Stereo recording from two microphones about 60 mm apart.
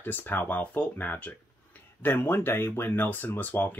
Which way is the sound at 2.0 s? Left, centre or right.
Left.